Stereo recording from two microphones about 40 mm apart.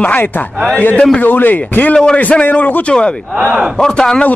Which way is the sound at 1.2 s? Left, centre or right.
Left.